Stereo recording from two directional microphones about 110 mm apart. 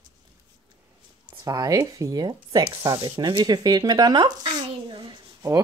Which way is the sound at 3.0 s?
45° right (ahead or behind).